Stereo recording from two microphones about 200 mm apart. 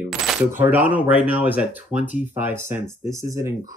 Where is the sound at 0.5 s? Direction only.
10° right (ahead or behind).